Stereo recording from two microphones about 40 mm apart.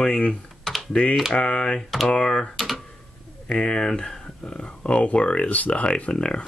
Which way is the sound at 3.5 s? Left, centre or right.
Left.